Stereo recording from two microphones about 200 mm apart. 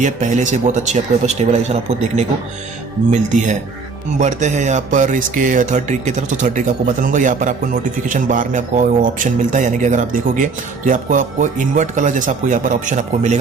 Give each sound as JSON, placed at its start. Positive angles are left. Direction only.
{"t": 0.0, "sound": "a man's voice", "side_deg": -40}